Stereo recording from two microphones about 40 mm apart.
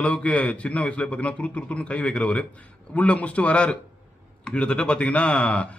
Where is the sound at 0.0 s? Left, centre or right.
Left.